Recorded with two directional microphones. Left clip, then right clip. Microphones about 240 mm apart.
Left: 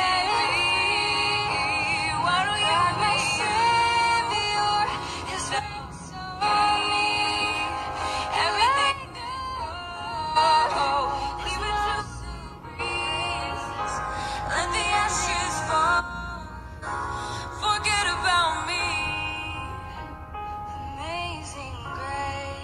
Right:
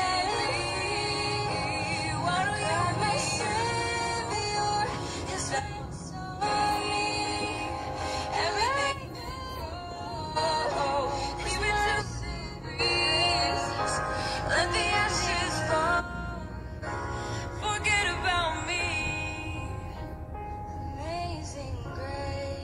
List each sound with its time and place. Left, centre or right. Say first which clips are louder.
0.1 s music: left 5 dB; centre
10.4 s music: left 7 dB; centre